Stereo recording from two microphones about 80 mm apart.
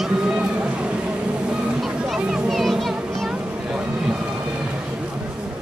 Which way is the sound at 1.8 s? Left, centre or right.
Centre.